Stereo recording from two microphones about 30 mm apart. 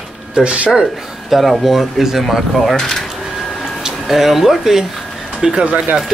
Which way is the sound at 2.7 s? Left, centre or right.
Centre.